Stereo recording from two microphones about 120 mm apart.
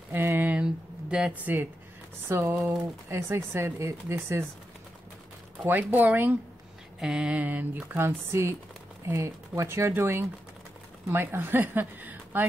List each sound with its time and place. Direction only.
0.1 s a sound: 20° right (ahead or behind)
2.2 s speech: 15° right (ahead or behind)
5.7 s speech: 15° right (ahead or behind)